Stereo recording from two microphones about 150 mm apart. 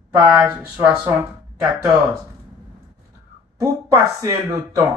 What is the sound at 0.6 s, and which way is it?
Speech, 10° right (ahead or behind).